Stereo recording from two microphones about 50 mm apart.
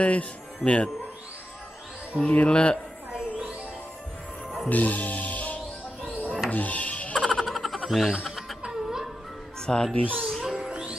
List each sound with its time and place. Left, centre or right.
0.0 s a man's voice: left
2.2 s speech: left
3.1 s music: centre
4.6 s speech: left
6.0 s a sound: left
6.5 s music: left
7.3 s a sound: centre
9.7 s a child's voice: centre
10.0 s speech: right
10.4 s music: centre